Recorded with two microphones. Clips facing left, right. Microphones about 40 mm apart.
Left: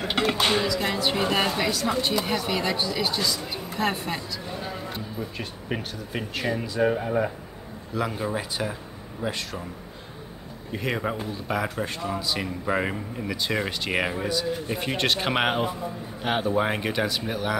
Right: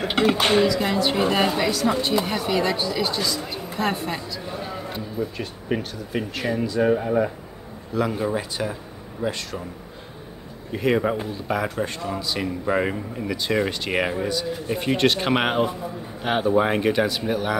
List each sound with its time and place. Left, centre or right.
0.0 s speech: centre
0.4 s speech: right
0.7 s a man's voice: centre
5.7 s a man's voice: centre
10.7 s a man's voice: centre